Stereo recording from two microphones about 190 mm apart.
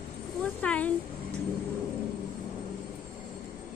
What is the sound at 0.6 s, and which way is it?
Speech, 5° left (ahead or behind).